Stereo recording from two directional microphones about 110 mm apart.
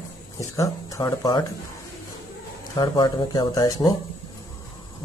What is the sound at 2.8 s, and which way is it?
Speech, 40° left (ahead or behind).